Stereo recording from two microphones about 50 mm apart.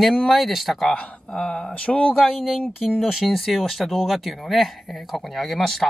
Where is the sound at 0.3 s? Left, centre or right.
Centre.